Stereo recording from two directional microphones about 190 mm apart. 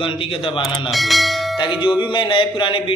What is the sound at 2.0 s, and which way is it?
Speech, 25° left (ahead or behind).